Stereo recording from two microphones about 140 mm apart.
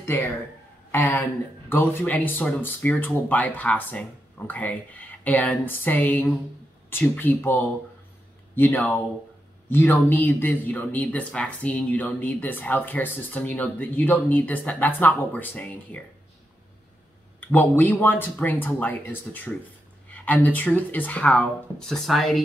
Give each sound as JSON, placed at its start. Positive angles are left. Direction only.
{"t": 0.9, "sound": "speech", "side_deg": 15}
{"t": 17.4, "sound": "speech", "side_deg": 15}